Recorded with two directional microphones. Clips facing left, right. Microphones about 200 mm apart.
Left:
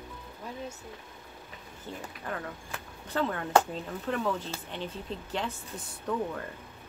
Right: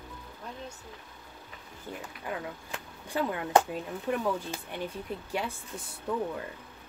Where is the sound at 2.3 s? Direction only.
10° right (ahead or behind).